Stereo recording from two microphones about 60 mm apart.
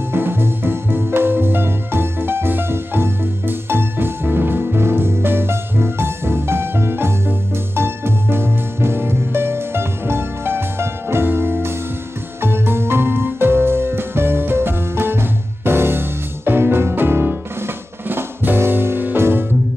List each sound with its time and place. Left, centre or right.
0.1 s music: right